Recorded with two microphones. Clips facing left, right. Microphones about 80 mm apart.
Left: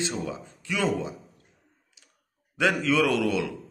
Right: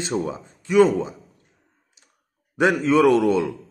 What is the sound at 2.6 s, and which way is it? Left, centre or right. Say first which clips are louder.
Speech: right 6 dB; right.